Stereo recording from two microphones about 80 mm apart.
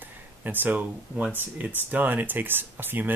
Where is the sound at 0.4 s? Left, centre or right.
Right.